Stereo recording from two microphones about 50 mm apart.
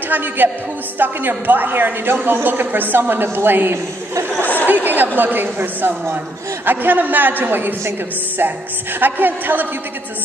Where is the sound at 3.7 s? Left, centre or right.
Right.